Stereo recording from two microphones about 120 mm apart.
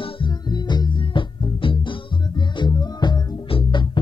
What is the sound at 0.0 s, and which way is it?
Music, 40° left (ahead or behind).